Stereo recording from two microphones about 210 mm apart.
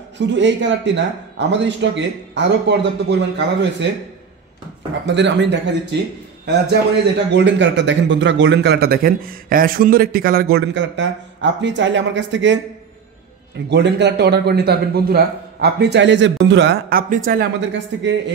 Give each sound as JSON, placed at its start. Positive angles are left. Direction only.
{"t": 0.3, "sound": "a man's voice", "side_deg": -60}
{"t": 5.0, "sound": "a man's voice", "side_deg": -55}
{"t": 13.7, "sound": "a man's voice", "side_deg": -55}
{"t": 18.0, "sound": "a man's voice", "side_deg": -60}